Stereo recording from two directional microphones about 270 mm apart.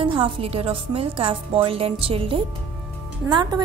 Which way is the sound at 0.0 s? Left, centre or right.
Centre.